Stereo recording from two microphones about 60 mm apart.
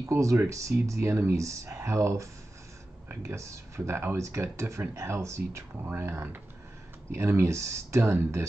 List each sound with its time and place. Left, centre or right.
0.0 s speech: right
5.9 s speech: right